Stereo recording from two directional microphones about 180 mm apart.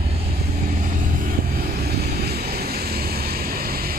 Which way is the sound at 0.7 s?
50° right (ahead or behind).